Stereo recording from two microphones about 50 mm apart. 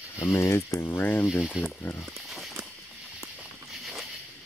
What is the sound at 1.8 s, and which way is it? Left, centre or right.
Speech, left.